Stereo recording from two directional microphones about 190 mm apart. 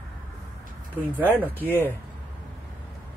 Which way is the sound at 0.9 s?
10° right (ahead or behind).